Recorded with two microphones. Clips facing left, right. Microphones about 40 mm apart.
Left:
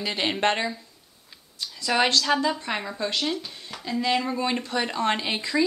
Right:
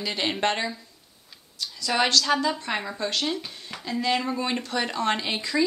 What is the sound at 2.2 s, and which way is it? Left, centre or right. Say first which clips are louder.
A woman's voice: left 1 dB; centre.